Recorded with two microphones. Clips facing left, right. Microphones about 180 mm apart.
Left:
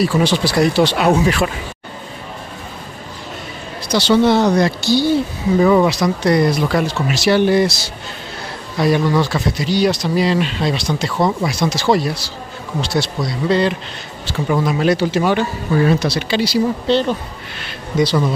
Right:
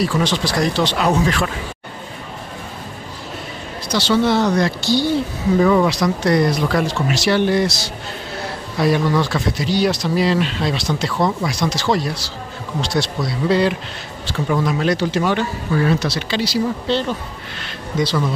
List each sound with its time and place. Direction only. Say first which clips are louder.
0.0 s speech: left 3 dB; 5° left (ahead or behind)
3.9 s speech: left 3 dB; 20° left (ahead or behind)